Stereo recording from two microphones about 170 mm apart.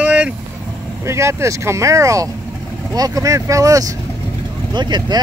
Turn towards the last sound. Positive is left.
turn(degrees=-25)  # may be behind; listen again after turning